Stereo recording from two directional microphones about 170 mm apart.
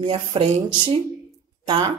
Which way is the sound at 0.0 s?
30° right (ahead or behind).